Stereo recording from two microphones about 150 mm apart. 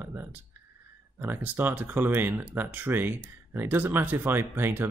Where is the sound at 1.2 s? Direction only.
15° right (ahead or behind).